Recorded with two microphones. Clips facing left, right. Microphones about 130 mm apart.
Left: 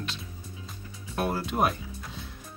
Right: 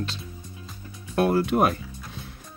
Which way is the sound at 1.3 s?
55° right (ahead or behind).